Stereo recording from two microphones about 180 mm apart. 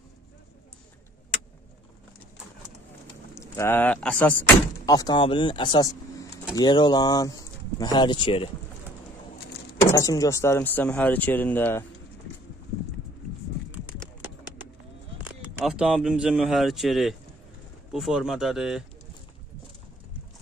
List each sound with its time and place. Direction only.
3.3 s speech: 15° left (ahead or behind)
4.8 s speech: 20° left (ahead or behind)
9.8 s speech: 20° left (ahead or behind)
15.2 s speech: 5° right (ahead or behind)